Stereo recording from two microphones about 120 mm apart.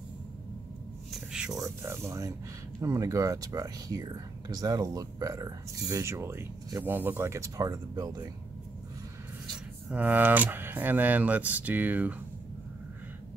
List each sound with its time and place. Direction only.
1.1 s a sound: 5° right (ahead or behind)
1.6 s speech: 25° right (ahead or behind)
9.8 s speech: 15° right (ahead or behind)